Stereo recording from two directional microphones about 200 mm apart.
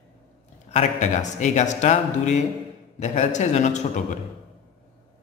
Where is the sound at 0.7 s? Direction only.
35° left (ahead or behind).